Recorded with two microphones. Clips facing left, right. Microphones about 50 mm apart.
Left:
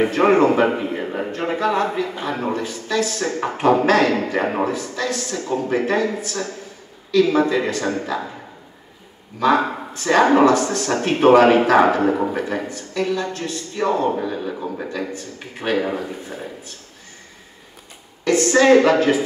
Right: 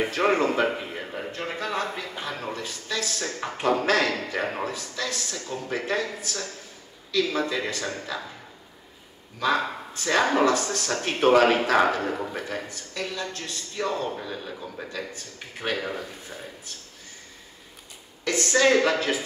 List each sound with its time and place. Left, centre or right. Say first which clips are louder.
0.0 s a man's voice: left 8 dB; left
9.4 s a man's voice: left 7 dB; left
14.2 s speech: left 10 dB; centre
14.5 s a man's voice: left 8 dB; left
18.2 s a man's voice: left 7 dB; left